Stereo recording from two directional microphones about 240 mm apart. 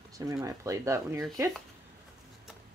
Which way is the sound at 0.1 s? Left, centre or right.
Centre.